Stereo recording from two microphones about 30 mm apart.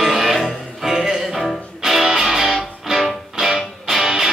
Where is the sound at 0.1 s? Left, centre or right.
Centre.